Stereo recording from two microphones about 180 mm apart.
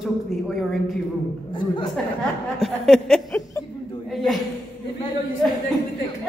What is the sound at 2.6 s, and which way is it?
A woman's voice, centre (ahead or behind).